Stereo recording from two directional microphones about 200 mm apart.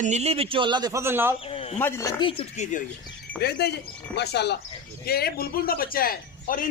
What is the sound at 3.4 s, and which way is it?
A man's voice, 55° left (ahead or behind).